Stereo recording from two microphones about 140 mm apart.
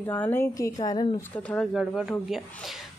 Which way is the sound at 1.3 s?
10° left (ahead or behind).